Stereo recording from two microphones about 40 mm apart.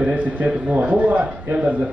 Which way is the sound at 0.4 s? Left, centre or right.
Right.